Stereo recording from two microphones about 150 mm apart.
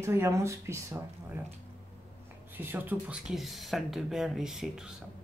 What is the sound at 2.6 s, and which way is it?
Speech, 10° right (ahead or behind).